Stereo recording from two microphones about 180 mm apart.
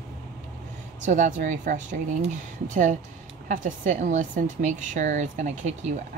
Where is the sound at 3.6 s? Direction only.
45° right (ahead or behind).